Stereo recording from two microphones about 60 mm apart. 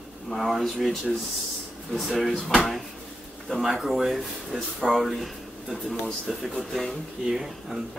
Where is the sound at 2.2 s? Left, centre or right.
Centre.